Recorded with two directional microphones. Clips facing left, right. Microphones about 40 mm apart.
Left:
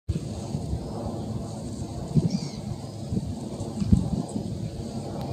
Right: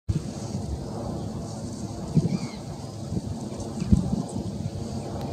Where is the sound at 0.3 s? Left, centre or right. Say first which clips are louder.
Even; left.